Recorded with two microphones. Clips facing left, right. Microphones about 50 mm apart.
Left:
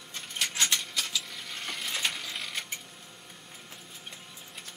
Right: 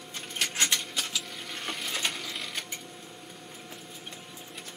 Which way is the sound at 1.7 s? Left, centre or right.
Centre.